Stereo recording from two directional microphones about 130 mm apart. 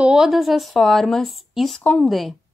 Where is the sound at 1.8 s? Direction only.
10° left (ahead or behind).